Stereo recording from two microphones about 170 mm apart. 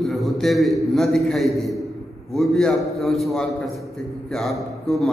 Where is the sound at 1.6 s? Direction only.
Centre (ahead or behind).